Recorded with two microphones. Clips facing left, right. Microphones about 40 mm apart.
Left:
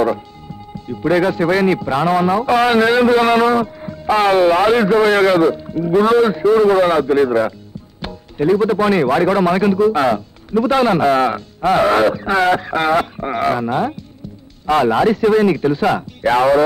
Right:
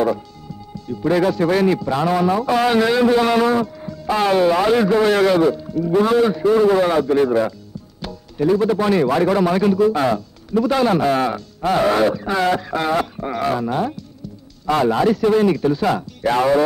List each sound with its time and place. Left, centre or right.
0.7 s a man's voice: left